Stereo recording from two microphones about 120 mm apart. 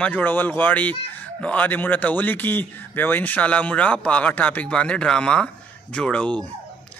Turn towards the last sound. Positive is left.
turn(degrees=10)  # may be behind; listen again after turning